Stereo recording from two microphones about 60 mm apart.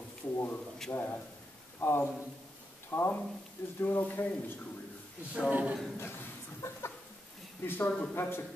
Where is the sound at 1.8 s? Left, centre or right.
Left.